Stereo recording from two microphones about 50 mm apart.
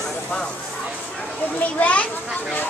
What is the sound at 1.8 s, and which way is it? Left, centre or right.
Children playing, left.